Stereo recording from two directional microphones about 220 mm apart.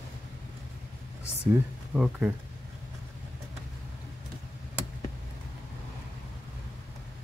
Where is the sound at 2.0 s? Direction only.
5° right (ahead or behind).